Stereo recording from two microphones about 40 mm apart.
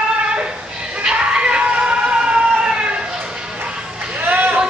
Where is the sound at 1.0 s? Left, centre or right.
Right.